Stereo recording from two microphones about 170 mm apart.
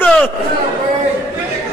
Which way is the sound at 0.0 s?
10° left (ahead or behind).